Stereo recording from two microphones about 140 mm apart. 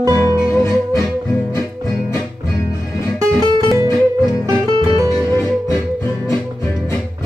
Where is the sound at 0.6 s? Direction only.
20° left (ahead or behind).